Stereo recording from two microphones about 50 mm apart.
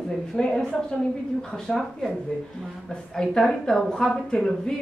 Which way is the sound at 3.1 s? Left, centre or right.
Centre.